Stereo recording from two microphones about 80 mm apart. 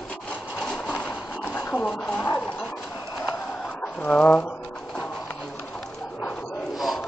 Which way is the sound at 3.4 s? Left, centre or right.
Centre.